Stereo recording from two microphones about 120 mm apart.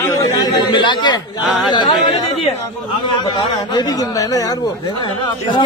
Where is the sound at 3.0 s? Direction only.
45° left (ahead or behind).